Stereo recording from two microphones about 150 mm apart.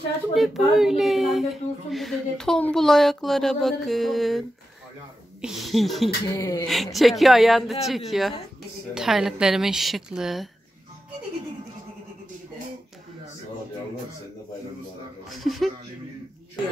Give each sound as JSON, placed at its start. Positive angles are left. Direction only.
{"t": 0.3, "sound": "speech", "side_deg": 0}
{"t": 6.3, "sound": "speech", "side_deg": 25}
{"t": 6.7, "sound": "speech", "side_deg": 0}
{"t": 15.2, "sound": "speech", "side_deg": 0}